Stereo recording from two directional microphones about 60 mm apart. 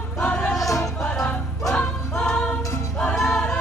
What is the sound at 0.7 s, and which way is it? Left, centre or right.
Music, left.